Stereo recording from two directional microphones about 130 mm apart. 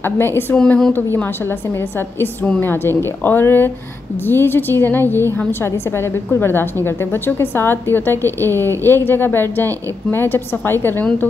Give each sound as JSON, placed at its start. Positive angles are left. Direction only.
{"t": 0.0, "sound": "a woman's voice", "side_deg": 15}
{"t": 0.6, "sound": "speech", "side_deg": 5}
{"t": 2.1, "sound": "a woman's voice", "side_deg": 15}